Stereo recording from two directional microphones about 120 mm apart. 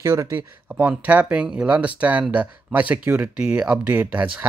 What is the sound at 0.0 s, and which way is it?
Speech, 25° right (ahead or behind).